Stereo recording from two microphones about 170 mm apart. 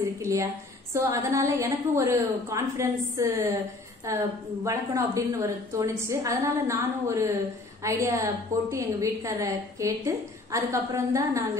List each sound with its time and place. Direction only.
0.2 s a woman's voice: 20° right (ahead or behind)